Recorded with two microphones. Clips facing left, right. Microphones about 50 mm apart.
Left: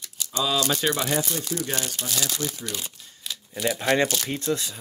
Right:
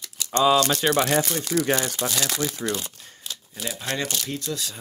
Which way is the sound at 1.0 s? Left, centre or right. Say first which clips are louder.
Right 3 dB; right.